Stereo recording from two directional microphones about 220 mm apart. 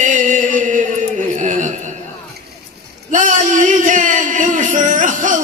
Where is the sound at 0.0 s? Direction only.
35° right (ahead or behind).